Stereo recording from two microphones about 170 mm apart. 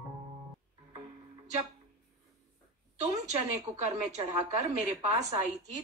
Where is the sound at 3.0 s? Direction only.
40° right (ahead or behind).